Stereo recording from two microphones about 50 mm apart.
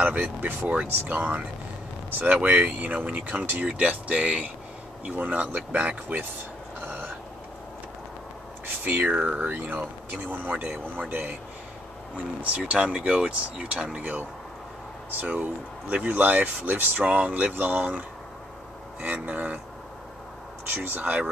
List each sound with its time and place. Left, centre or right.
0.0 s speech: right
8.8 s speech: right
12.4 s speech: right
15.0 s speech: right
20.6 s speech: right